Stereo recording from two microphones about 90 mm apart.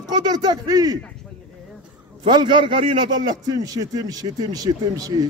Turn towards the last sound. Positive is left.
turn(degrees=-45)  # may be behind; listen again after turning